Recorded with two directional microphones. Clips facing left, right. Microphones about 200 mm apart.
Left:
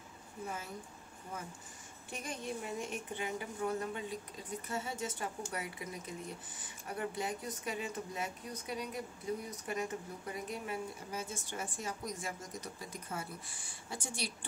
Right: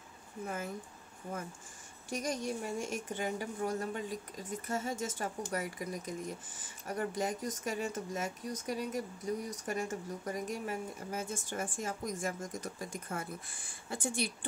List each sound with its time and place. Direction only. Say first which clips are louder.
2.0 s a woman's voice: right 6 dB; 40° right (ahead or behind)